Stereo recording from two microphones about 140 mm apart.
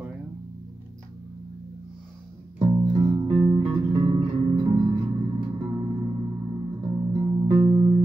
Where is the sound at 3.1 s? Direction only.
25° right (ahead or behind).